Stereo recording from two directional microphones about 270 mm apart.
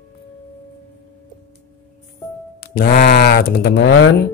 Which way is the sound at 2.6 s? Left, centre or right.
Left.